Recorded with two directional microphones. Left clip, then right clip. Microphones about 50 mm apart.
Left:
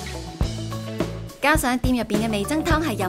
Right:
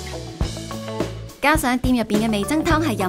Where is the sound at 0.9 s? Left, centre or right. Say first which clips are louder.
Even; centre.